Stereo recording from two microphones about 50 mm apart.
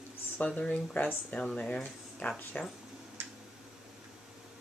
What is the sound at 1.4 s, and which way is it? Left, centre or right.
Speech, centre.